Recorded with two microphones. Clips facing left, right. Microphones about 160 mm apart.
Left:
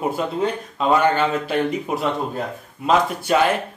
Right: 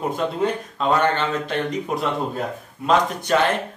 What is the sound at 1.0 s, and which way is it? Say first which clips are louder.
Speech: left 2 dB; 10° left (ahead or behind).